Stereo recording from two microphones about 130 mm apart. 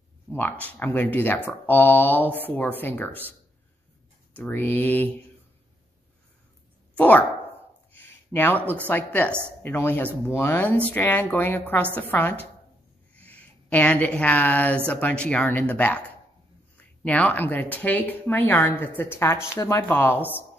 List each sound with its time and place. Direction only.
0.3 s speech: 15° left (ahead or behind)
4.4 s speech: 15° left (ahead or behind)
7.0 s speech: 10° left (ahead or behind)
7.9 s a sound: 15° left (ahead or behind)
8.8 s speech: 10° left (ahead or behind)